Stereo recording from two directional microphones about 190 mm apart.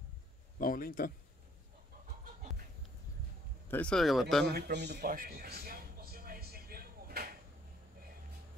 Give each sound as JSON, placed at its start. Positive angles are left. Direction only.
{"t": 0.6, "sound": "speech", "side_deg": 45}
{"t": 3.6, "sound": "speech", "side_deg": 10}
{"t": 4.5, "sound": "a sound", "side_deg": -60}